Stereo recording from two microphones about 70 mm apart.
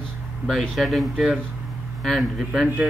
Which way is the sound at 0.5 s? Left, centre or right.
Centre.